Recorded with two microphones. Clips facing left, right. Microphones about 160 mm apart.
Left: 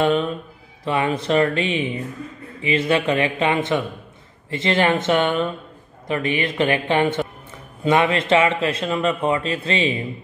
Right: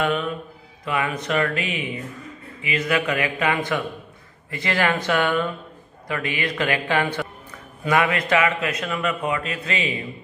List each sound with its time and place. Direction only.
0.0 s a man's voice: 30° left (ahead or behind)